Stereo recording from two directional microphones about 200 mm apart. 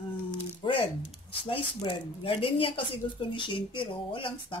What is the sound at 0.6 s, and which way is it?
A woman's voice, 25° left (ahead or behind).